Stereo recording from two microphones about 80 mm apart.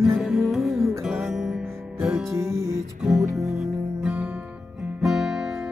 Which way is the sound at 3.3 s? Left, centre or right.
Centre.